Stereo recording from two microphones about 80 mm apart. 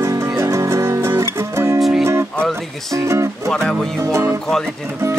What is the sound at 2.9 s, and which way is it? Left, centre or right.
Speech, right.